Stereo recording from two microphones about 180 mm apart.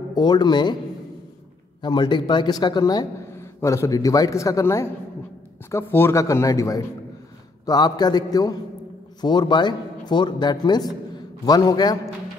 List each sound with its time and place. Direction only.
0.1 s a man's voice: 25° left (ahead or behind)
1.8 s a man's voice: 25° left (ahead or behind)